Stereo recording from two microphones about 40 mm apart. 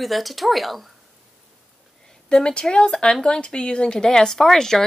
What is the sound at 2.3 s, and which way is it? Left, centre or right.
Speech, left.